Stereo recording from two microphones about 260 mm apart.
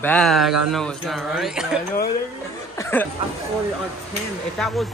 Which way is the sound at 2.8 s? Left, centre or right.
Centre.